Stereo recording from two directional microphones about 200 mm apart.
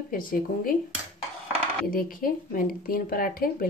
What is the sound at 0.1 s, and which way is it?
Speech, 45° left (ahead or behind).